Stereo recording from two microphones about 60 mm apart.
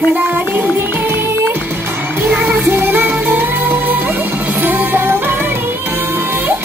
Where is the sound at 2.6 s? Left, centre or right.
Right.